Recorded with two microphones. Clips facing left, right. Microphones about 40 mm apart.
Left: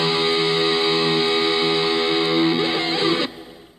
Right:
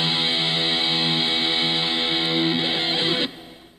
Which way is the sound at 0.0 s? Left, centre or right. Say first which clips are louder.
Left 4 dB; right.